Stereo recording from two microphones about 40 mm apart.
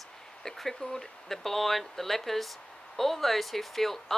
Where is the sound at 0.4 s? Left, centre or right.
Centre.